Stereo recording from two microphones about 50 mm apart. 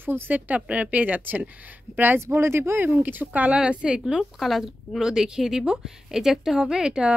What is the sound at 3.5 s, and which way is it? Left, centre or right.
Speech, right.